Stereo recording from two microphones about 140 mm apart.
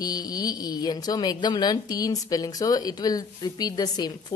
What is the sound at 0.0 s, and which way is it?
A woman's voice, 25° left (ahead or behind).